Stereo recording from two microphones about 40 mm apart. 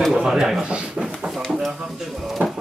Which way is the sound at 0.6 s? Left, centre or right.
Right.